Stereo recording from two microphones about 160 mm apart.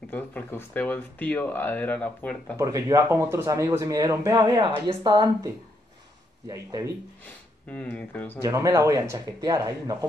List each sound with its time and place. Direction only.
0.1 s speech: 10° left (ahead or behind)
2.5 s speech: 20° right (ahead or behind)
6.5 s speech: 20° right (ahead or behind)
7.7 s speech: 10° left (ahead or behind)
8.4 s speech: 20° right (ahead or behind)